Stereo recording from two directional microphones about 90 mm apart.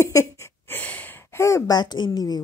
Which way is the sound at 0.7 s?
20° left (ahead or behind).